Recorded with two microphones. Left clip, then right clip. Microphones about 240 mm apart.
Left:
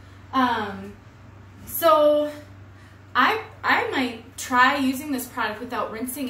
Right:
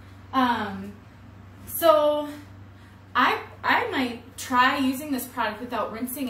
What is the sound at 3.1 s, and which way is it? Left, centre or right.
A woman's voice, centre.